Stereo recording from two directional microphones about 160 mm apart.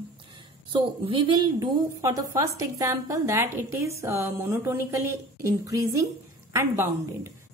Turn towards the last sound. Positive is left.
turn(degrees=-20)  # may be behind; listen again after turning